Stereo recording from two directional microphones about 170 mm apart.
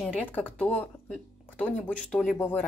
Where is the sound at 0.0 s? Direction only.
10° left (ahead or behind).